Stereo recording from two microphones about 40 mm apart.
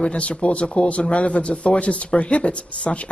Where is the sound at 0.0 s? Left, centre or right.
Left.